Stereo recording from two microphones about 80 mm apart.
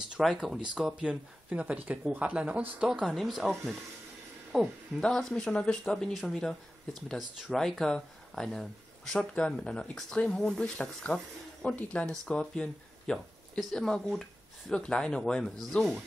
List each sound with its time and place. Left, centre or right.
0.4 s speech: centre
2.9 s speech: centre
5.0 s speech: centre
7.2 s speech: centre
7.5 s speech: centre